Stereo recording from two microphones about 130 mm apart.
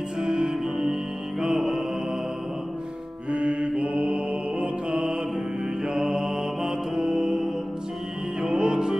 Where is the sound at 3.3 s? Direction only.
10° right (ahead or behind).